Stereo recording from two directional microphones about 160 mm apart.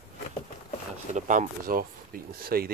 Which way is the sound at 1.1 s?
50° right (ahead or behind).